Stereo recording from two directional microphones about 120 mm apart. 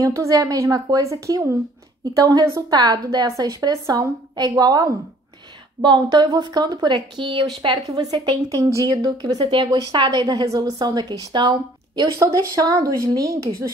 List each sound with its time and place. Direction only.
0.0 s a woman's voice: 30° right (ahead or behind)
10.2 s a woman's voice: 30° right (ahead or behind)